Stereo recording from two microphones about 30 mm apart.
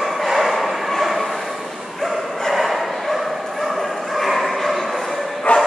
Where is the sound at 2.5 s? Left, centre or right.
Centre.